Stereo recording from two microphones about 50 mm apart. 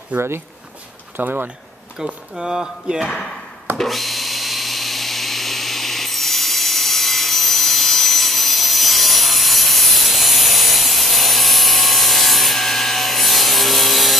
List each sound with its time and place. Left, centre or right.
0.1 s speech: right
1.1 s speech: right
2.0 s speech: centre
3.7 s tools: centre